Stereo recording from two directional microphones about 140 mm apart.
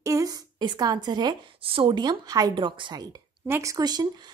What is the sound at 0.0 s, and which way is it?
A woman's voice, 25° right (ahead or behind).